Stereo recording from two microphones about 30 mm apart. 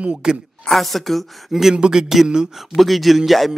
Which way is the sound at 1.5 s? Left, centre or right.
Centre.